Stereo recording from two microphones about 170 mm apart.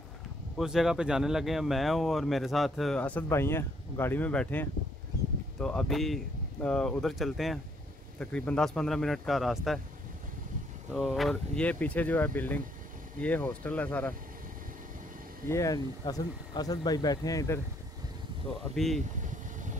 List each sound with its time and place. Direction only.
0.6 s speech: centre (ahead or behind)
10.9 s speech: centre (ahead or behind)
15.4 s speech: 20° left (ahead or behind)